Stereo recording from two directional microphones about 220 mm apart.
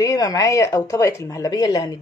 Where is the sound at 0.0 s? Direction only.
15° left (ahead or behind).